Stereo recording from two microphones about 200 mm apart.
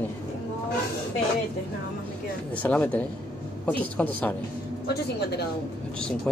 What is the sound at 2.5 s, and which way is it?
A woman's voice, 5° left (ahead or behind).